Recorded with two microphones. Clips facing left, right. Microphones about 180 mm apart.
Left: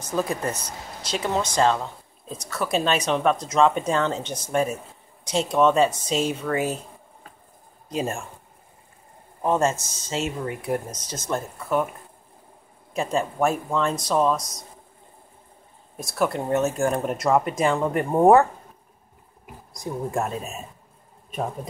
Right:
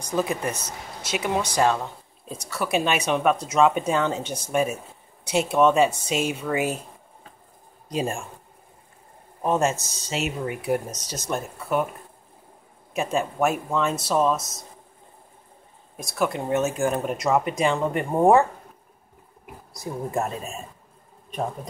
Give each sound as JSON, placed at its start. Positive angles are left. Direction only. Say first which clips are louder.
{"t": 0.0, "sound": "speech", "louder": "even", "side_deg": 0}
{"t": 7.9, "sound": "speech", "louder": "even", "side_deg": -15}
{"t": 9.4, "sound": "speech", "louder": "left 1 dB", "side_deg": -10}
{"t": 9.8, "sound": "speech", "louder": "left 1 dB", "side_deg": 30}
{"t": 10.4, "sound": "speech", "louder": "right 1 dB", "side_deg": -15}
{"t": 10.7, "sound": "speech", "louder": "right 3 dB", "side_deg": 30}
{"t": 11.2, "sound": "speech", "louder": "left 1 dB", "side_deg": -10}
{"t": 12.9, "sound": "speech", "louder": "even", "side_deg": -10}
{"t": 16.0, "sound": "speech", "louder": "left 1 dB", "side_deg": 0}
{"t": 19.7, "sound": "speech", "louder": "left 1 dB", "side_deg": 0}